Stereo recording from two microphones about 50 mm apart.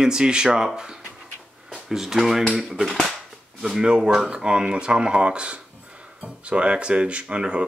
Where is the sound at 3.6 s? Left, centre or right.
Centre.